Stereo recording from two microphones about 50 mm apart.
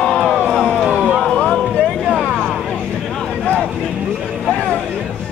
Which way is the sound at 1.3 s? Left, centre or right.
Centre.